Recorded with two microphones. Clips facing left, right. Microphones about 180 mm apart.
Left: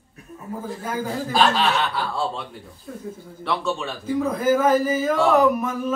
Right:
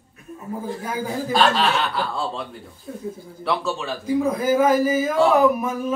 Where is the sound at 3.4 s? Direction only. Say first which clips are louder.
Right 1 dB; centre (ahead or behind).